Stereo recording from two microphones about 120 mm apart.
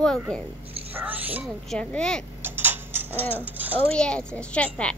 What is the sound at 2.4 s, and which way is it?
Tick-tock, 20° right (ahead or behind).